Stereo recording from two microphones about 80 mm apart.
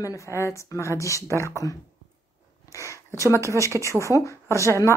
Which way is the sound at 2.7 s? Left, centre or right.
Left.